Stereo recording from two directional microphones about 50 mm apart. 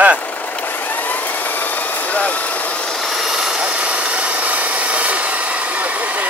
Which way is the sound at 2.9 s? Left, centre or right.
Centre.